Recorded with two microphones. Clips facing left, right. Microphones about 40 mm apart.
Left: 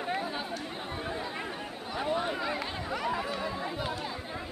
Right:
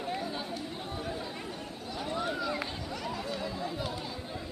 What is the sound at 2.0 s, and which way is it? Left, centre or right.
Run, left.